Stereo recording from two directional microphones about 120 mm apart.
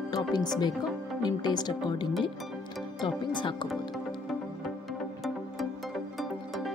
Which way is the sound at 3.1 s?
45° left (ahead or behind).